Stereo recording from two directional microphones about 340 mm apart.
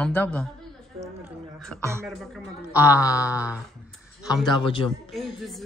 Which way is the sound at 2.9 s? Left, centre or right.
Centre.